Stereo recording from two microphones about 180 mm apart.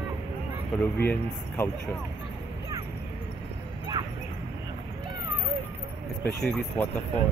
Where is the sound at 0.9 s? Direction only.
10° left (ahead or behind).